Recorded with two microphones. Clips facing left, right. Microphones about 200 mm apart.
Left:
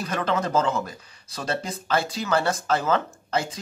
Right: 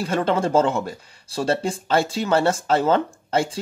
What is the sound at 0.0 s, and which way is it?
Speech, 30° right (ahead or behind).